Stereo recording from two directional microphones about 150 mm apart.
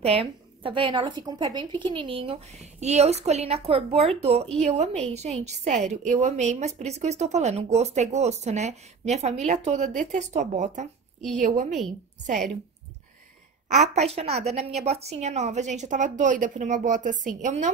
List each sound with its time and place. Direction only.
0.0 s a woman's voice: 40° right (ahead or behind)
13.7 s a woman's voice: 50° right (ahead or behind)